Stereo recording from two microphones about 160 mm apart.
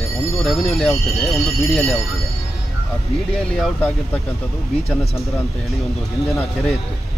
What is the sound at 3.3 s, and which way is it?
Speech, 5° left (ahead or behind).